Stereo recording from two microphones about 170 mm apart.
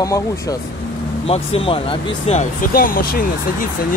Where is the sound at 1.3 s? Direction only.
35° left (ahead or behind).